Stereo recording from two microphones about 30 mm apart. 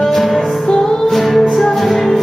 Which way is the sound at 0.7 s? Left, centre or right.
Centre.